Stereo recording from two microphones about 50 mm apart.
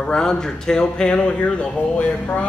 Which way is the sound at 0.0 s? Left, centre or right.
Centre.